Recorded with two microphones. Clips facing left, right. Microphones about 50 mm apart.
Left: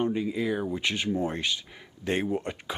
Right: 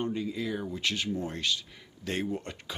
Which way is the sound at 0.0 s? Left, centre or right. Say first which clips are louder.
Left 5 dB; centre.